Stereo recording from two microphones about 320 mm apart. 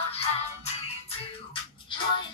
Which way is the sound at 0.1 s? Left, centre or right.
Centre.